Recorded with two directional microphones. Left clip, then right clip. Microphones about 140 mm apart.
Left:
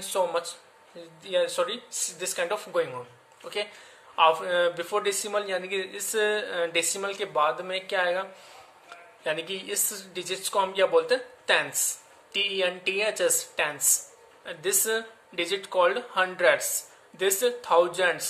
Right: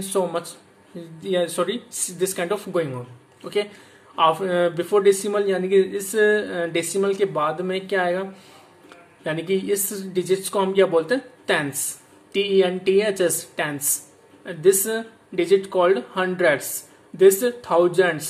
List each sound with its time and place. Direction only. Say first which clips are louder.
0.0 s speech: right 3 dB; 15° right (ahead or behind)
4.1 s a man's voice: right 3 dB; 15° right (ahead or behind)